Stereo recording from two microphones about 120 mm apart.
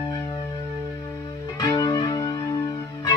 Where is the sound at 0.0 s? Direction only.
35° left (ahead or behind).